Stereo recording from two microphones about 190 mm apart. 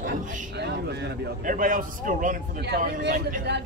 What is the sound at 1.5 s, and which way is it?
A man's voice, 45° right (ahead or behind).